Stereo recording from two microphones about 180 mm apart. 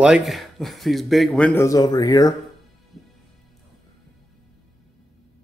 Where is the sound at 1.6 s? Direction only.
20° left (ahead or behind).